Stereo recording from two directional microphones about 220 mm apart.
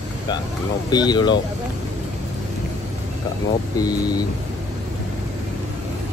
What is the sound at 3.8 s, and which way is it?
Speech, 15° left (ahead or behind).